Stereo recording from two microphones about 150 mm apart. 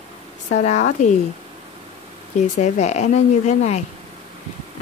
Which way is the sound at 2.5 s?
50° left (ahead or behind).